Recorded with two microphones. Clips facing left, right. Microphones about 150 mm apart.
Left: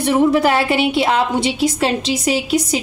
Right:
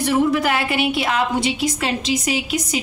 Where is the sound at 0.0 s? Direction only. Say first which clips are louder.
Left 4 dB; 30° left (ahead or behind).